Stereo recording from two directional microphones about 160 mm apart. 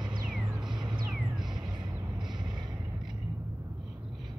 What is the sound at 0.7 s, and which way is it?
Music, 30° right (ahead or behind).